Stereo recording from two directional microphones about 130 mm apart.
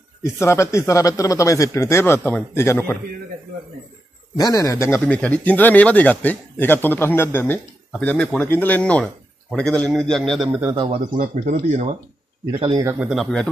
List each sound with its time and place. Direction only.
0.2 s speech: 20° left (ahead or behind)
4.4 s a man's voice: 25° left (ahead or behind); by 10.5 s 5° left (ahead or behind)
10.7 s a man's voice: 40° right (ahead or behind)
11.4 s speech: 60° right (ahead or behind)
13.1 s a man's voice: 5° left (ahead or behind)